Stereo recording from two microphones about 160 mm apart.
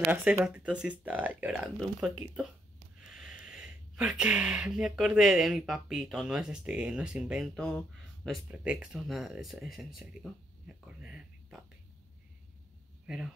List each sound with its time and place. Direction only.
0.1 s speech: 10° right (ahead or behind)
7.5 s speech: 5° left (ahead or behind)
8.5 s speech: 5° right (ahead or behind)
10.9 s a sound: 5° right (ahead or behind)
13.0 s speech: 5° right (ahead or behind)